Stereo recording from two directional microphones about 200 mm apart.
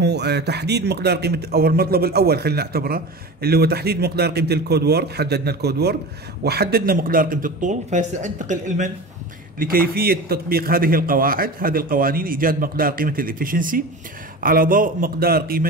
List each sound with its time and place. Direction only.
0.0 s speech: 55° right (ahead or behind)